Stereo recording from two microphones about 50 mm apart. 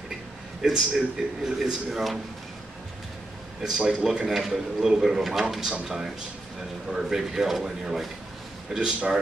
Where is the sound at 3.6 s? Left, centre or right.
Centre.